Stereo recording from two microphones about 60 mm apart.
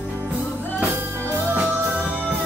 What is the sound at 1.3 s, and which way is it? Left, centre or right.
Music, right.